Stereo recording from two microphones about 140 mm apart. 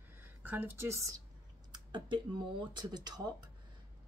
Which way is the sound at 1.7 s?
30° right (ahead or behind).